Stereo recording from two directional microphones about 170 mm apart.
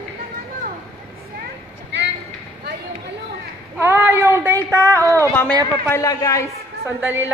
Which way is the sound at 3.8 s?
15° right (ahead or behind).